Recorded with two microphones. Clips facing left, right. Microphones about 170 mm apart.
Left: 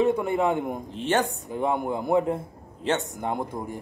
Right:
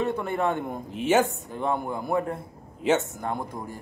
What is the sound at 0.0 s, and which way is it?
Speech, 15° left (ahead or behind).